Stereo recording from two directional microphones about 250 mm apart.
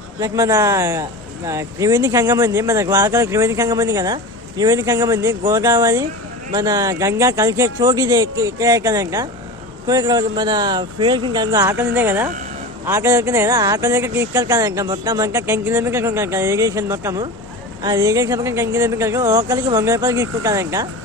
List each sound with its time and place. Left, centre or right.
0.2 s speech: centre